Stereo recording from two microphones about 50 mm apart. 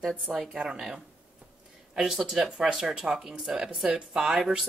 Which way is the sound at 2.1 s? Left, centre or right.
Centre.